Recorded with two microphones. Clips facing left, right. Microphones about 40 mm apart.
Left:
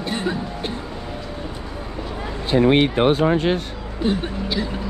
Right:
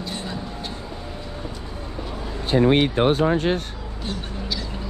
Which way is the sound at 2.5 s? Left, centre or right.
Left.